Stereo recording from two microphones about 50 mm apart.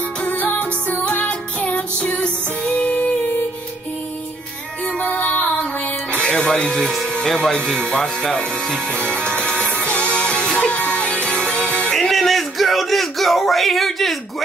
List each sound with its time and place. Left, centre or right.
0.2 s music: left
5.0 s music: left
6.1 s speech: centre
9.5 s music: left
11.9 s a sound: centre